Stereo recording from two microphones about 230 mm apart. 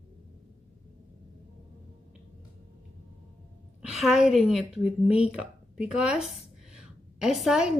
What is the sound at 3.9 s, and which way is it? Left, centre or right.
Speech, centre.